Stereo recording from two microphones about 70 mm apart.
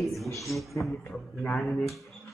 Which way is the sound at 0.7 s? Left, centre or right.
Centre.